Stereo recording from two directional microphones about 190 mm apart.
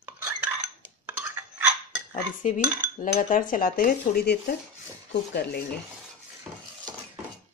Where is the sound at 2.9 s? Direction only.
40° left (ahead or behind).